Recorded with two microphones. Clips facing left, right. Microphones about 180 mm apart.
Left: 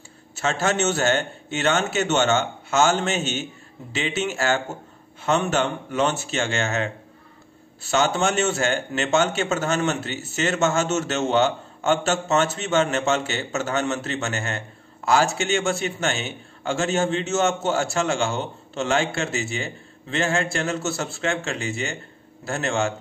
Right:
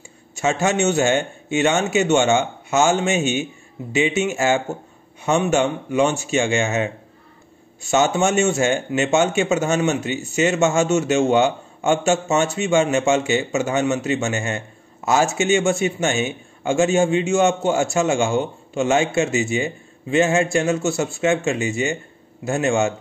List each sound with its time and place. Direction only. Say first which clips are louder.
0.4 s a man's voice: right 4 dB; 15° right (ahead or behind)
7.9 s a man's voice: right 4 dB; 15° right (ahead or behind)